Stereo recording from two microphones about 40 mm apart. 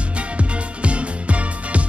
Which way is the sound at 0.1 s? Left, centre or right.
Right.